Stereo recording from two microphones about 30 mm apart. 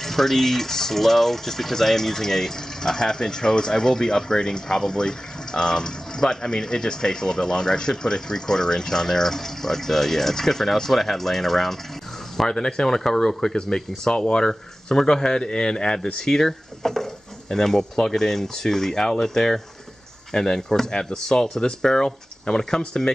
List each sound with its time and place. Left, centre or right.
0.0 s speech: centre
12.4 s speech: left